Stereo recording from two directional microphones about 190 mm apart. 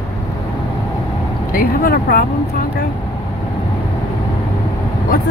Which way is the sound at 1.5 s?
50° left (ahead or behind).